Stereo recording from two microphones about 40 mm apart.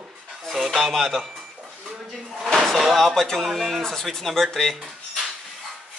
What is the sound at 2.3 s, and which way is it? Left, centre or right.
Speech, centre.